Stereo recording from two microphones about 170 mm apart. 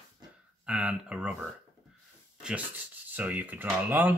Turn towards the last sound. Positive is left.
turn(degrees=-10)  # may be behind; listen again after turning